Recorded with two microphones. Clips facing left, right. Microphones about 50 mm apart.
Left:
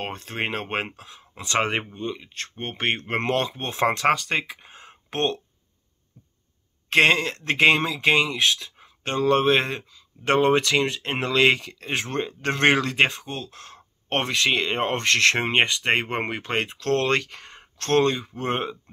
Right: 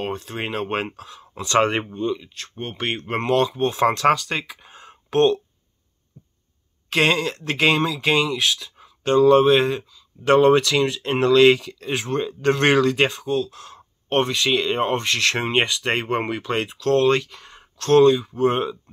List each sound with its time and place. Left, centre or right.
0.0 s speech: left
0.8 s speech: left
2.0 s speech: left
2.3 s speech: left
6.9 s speech: left
10.3 s speech: left
14.0 s speech: left
14.5 s speech: left
15.3 s speech: left